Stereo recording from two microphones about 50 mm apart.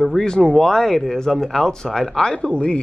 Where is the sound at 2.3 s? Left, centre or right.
Centre.